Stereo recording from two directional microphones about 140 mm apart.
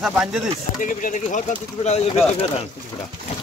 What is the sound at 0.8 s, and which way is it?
Speech, 70° left (ahead or behind).